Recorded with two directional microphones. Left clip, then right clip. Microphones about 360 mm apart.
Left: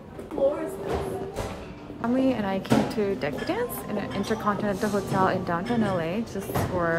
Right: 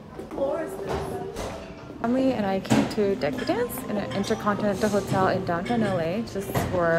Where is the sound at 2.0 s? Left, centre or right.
Centre.